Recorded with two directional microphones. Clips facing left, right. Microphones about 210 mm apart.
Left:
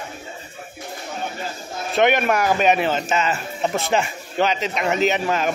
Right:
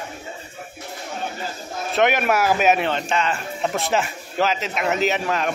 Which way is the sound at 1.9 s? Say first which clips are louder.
Left 1 dB; centre (ahead or behind).